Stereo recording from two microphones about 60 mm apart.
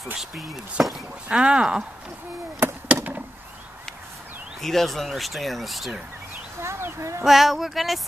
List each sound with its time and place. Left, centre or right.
0.1 s speech: centre
1.4 s speech: centre
2.9 s a sound: right
4.6 s speech: centre
6.6 s speech: right
7.2 s speech: centre